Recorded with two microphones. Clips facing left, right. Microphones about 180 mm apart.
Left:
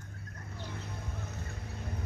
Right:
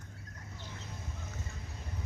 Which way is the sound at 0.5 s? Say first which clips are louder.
Left 5 dB; 60° left (ahead or behind).